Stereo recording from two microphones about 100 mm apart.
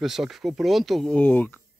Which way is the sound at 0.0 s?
5° right (ahead or behind).